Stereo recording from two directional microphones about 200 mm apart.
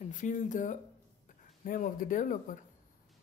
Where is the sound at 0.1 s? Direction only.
40° left (ahead or behind).